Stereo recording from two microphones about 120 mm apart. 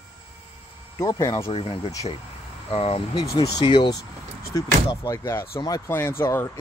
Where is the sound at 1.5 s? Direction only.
55° left (ahead or behind).